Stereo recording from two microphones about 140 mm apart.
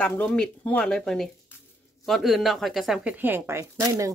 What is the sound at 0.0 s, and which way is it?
Speech, 10° left (ahead or behind).